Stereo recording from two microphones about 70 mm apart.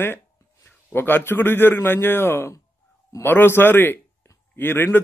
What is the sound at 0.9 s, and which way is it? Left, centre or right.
A man's voice, left.